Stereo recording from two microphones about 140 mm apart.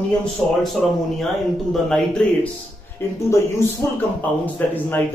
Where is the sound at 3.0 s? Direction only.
15° left (ahead or behind).